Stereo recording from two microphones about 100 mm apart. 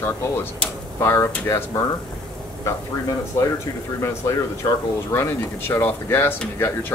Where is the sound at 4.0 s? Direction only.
30° left (ahead or behind).